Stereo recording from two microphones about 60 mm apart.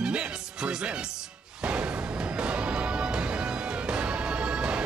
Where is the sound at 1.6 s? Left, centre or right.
Centre.